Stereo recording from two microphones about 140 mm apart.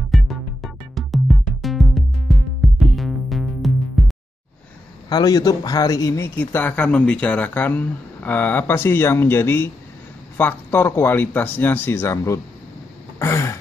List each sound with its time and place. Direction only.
0.1 s music: centre (ahead or behind)
5.1 s speech: 30° left (ahead or behind)
13.2 s throat clearing: 20° left (ahead or behind)